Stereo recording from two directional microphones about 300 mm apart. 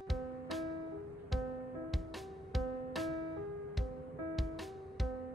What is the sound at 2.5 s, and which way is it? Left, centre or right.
Music, centre.